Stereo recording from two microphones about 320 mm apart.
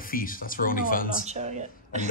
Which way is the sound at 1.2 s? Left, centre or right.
Right.